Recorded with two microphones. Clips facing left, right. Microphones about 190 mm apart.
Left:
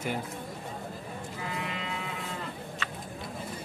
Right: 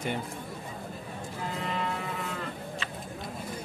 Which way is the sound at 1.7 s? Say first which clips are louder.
Right 4 dB; 50° right (ahead or behind).